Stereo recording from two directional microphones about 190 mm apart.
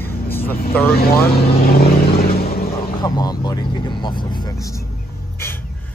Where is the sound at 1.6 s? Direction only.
50° left (ahead or behind).